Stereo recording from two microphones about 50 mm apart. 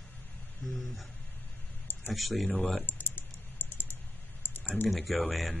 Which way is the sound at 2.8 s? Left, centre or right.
Left.